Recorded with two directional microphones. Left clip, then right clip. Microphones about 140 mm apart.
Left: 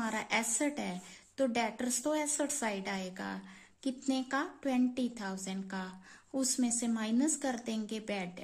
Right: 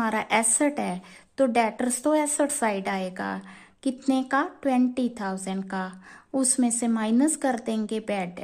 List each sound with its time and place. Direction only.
0.0 s a woman's voice: 30° right (ahead or behind)